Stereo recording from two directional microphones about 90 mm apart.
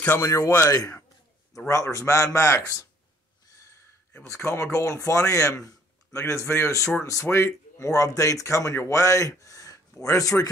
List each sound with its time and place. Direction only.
0.2 s a man's voice: 35° left (ahead or behind)
4.3 s a man's voice: 30° left (ahead or behind)